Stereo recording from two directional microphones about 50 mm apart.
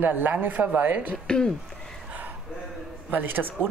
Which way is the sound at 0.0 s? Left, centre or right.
Right.